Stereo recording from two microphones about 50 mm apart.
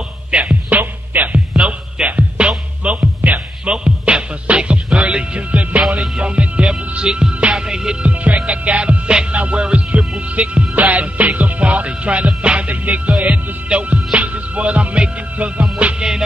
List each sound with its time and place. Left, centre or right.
0.3 s music: right
3.6 s music: centre
5.8 s music: centre
8.1 s music: right